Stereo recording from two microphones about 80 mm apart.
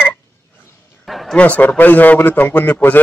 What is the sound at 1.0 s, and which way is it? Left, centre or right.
Bow-wow, centre.